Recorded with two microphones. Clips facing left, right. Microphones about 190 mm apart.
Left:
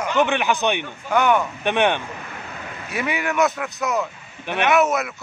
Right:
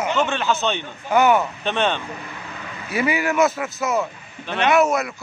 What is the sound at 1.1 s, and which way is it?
Speech, 5° right (ahead or behind).